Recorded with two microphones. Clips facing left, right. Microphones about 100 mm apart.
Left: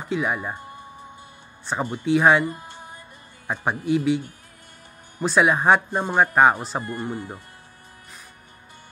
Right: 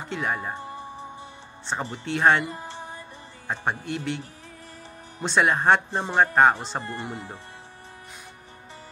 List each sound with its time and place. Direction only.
0.1 s speech: 5° left (ahead or behind)
1.7 s speech: 5° left (ahead or behind)
2.5 s music: 30° right (ahead or behind)
3.4 s speech: 10° left (ahead or behind)
5.2 s speech: 5° left (ahead or behind)
6.8 s speech: 25° right (ahead or behind)